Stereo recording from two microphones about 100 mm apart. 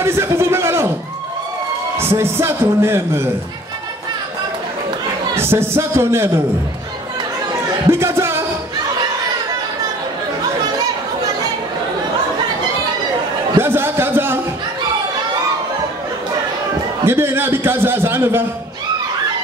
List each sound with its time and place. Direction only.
0.0 s a sound: 25° right (ahead or behind)
2.0 s a man's voice: 25° right (ahead or behind)
5.3 s a man's voice: 25° right (ahead or behind)
7.9 s music: 25° right (ahead or behind)
13.6 s a sound: 25° right (ahead or behind)
17.0 s a man's voice: 25° right (ahead or behind)